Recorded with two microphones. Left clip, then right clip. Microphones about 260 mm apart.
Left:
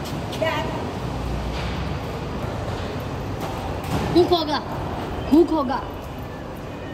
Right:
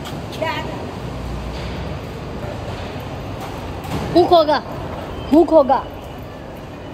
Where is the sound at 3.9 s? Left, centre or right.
Centre.